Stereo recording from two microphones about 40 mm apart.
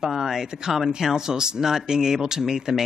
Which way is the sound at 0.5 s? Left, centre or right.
Centre.